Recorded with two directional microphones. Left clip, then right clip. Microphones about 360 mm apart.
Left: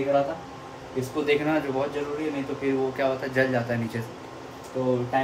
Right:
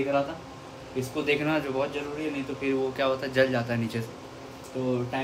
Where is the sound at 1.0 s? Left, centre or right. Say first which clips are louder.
Left 3 dB; centre.